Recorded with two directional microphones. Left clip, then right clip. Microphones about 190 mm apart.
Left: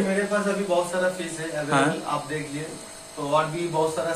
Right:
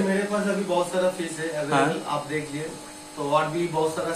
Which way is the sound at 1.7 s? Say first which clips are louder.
Even; 10° left (ahead or behind).